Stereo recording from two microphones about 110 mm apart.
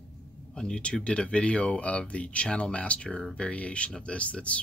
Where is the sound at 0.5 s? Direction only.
10° left (ahead or behind).